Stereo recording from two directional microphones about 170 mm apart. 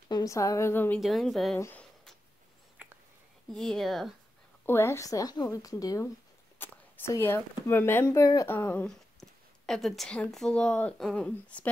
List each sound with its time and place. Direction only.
0.1 s a woman's voice: 20° left (ahead or behind)
1.0 s speech: centre (ahead or behind)
1.6 s a sound: 10° left (ahead or behind)
2.8 s whispering: 10° right (ahead or behind)
3.5 s speech: centre (ahead or behind)
4.6 s a woman's voice: 15° left (ahead or behind)